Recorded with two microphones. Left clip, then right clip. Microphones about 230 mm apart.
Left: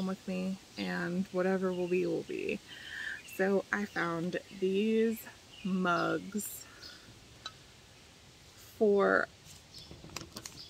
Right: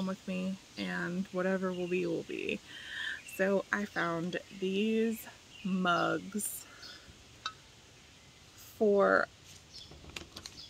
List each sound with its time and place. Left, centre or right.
0.0 s speech: centre
8.7 s speech: centre
10.1 s a sound: left